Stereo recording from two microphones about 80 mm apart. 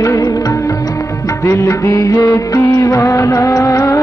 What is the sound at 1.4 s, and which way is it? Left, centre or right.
Music, left.